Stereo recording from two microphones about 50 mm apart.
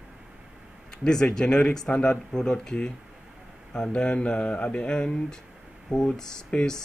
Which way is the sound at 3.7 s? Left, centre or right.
Centre.